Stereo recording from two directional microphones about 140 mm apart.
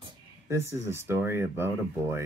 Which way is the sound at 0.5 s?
20° right (ahead or behind).